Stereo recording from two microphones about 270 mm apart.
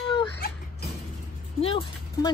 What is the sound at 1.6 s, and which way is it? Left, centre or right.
Speech, centre.